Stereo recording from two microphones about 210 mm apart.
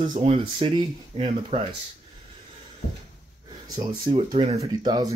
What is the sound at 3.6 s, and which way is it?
Speech, 20° right (ahead or behind).